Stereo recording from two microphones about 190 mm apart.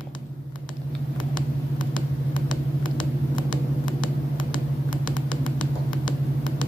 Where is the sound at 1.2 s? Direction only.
25° left (ahead or behind).